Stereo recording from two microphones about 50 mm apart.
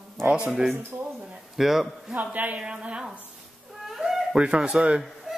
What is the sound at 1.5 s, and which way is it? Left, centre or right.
Speech, centre.